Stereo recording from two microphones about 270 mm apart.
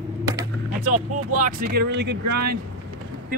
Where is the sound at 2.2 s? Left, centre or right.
Right.